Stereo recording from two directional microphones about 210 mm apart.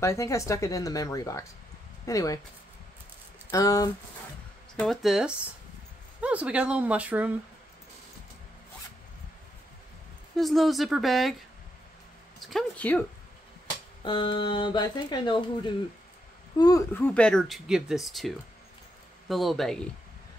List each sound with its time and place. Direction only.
0.0 s speech: 15° left (ahead or behind)
3.5 s speech: 15° left (ahead or behind)
4.7 s speech: centre (ahead or behind)
10.3 s speech: centre (ahead or behind)
12.4 s speech: 5° left (ahead or behind)
14.0 s speech: 25° left (ahead or behind); by 19.9 s centre (ahead or behind)